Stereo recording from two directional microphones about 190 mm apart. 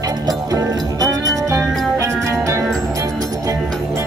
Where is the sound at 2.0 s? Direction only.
15° right (ahead or behind).